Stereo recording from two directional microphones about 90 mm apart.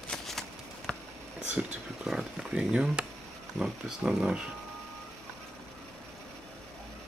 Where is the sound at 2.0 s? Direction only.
5° right (ahead or behind).